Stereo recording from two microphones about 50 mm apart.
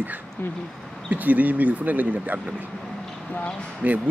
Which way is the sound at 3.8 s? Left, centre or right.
Right.